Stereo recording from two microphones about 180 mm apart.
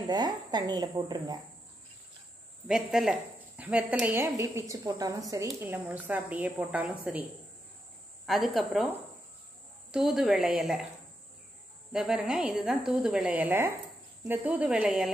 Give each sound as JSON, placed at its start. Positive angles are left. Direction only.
{"t": 0.0, "sound": "speech", "side_deg": -25}
{"t": 2.7, "sound": "a woman's voice", "side_deg": -5}
{"t": 8.3, "sound": "a woman's voice", "side_deg": 0}
{"t": 9.8, "sound": "a woman's voice", "side_deg": 0}
{"t": 11.9, "sound": "a woman's voice", "side_deg": -5}